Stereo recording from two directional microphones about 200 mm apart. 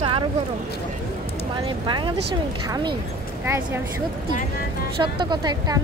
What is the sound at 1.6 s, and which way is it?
Speech, 25° right (ahead or behind).